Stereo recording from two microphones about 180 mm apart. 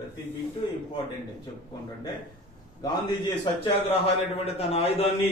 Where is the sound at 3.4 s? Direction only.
30° left (ahead or behind).